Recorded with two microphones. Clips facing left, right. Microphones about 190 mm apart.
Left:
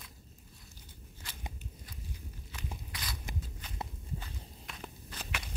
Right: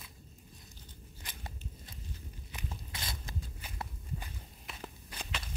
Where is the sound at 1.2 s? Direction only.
15° right (ahead or behind).